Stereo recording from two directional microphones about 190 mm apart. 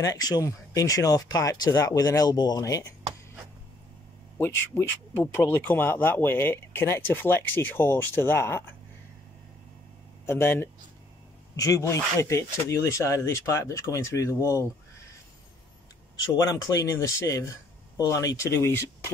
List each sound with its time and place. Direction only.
0.0 s speech: 20° left (ahead or behind)
4.4 s speech: 15° left (ahead or behind)
10.2 s speech: 15° left (ahead or behind)
16.2 s speech: 20° left (ahead or behind)